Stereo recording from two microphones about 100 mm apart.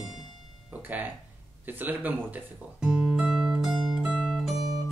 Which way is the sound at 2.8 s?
5° right (ahead or behind).